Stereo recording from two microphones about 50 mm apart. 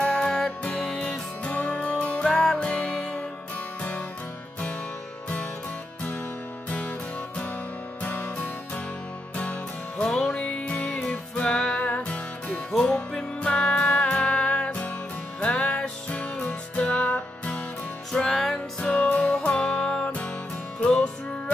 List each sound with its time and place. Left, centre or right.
0.0 s music: centre
1.4 s music: left
2.2 s music: centre
2.6 s music: left
8.0 s music: left
10.0 s music: centre
10.3 s music: left
12.7 s music: centre
18.3 s music: centre
18.8 s music: left
19.2 s music: centre